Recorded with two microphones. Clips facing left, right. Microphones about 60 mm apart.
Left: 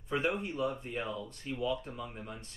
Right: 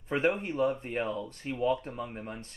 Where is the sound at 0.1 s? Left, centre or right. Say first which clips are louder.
Right 4 dB; right.